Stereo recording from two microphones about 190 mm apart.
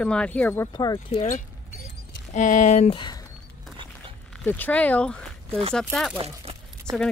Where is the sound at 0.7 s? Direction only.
20° left (ahead or behind).